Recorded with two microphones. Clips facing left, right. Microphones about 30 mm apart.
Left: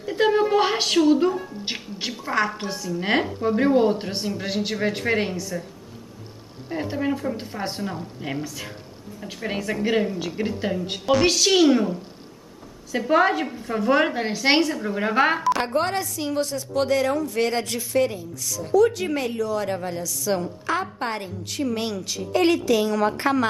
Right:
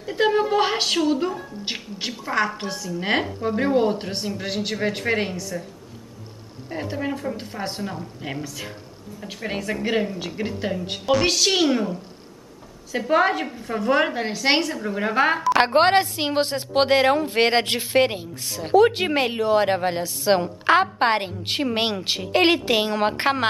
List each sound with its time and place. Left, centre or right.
0.0 s a woman's voice: centre
6.7 s a woman's voice: centre
15.5 s a woman's voice: right